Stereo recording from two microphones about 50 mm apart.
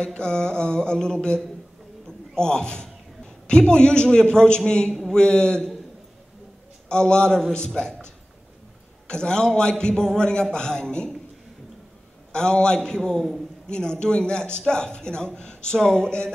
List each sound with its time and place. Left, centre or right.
0.0 s a man's voice: centre
2.0 s a sound: centre
3.4 s a man's voice: centre
6.9 s a man's voice: centre
12.3 s a man's voice: centre